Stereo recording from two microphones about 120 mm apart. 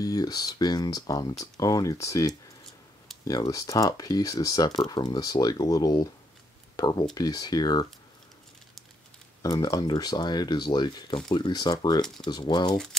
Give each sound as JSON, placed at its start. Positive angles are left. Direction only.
{"t": 0.0, "sound": "speech", "side_deg": 30}
{"t": 9.4, "sound": "speech", "side_deg": 30}